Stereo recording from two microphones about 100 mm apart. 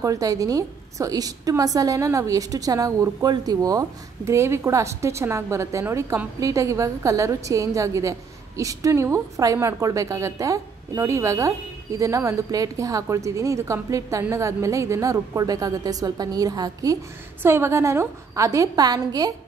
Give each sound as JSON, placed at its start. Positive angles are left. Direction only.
{"t": 0.0, "sound": "a woman's voice", "side_deg": -35}
{"t": 17.4, "sound": "a woman's voice", "side_deg": -25}